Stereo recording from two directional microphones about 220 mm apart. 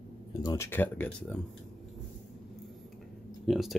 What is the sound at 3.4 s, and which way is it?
Speech, centre (ahead or behind).